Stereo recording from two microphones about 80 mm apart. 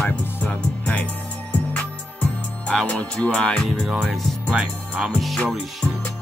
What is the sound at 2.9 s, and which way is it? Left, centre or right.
Speech, centre.